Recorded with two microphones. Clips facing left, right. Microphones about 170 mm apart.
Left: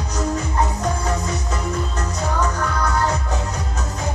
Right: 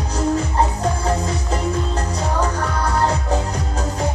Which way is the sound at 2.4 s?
30° right (ahead or behind).